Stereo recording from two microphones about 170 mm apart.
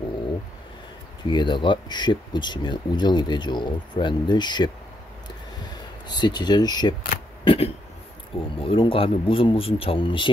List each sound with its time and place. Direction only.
1.2 s speech: 25° left (ahead or behind)
6.0 s speech: 25° left (ahead or behind)